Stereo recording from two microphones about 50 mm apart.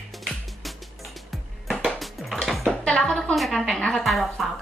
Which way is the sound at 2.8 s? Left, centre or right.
Centre.